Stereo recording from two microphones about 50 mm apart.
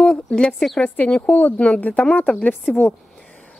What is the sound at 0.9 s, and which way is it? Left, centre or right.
A woman's voice, left.